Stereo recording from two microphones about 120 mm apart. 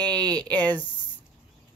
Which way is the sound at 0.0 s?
35° right (ahead or behind).